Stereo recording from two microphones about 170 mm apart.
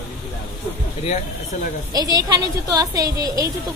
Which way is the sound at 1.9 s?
20° right (ahead or behind).